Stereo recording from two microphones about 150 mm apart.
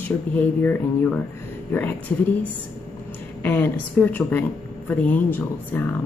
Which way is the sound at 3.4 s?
15° left (ahead or behind).